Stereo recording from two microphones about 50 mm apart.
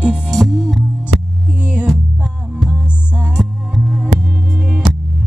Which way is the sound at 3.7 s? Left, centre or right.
Centre.